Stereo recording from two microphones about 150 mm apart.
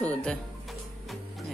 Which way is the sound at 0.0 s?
5° left (ahead or behind).